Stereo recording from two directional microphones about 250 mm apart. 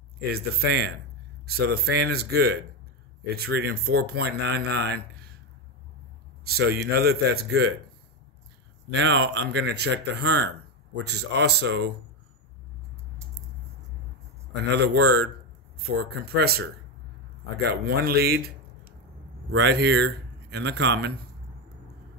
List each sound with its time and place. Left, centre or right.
0.3 s speech: right
6.4 s speech: right
8.9 s speech: right
14.8 s a man's voice: right